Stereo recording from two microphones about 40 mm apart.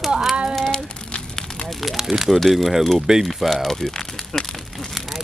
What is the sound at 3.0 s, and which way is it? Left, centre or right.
Speech, centre.